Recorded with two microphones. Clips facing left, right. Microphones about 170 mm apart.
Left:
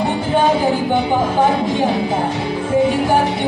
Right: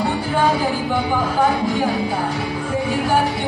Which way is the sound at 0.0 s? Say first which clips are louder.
Left 3 dB; 20° left (ahead or behind).